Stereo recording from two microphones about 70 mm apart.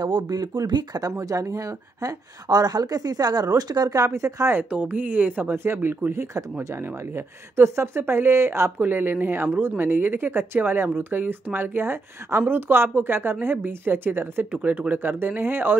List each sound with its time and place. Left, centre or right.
0.0 s speech: right
1.1 s a woman's voice: right
4.6 s speech: centre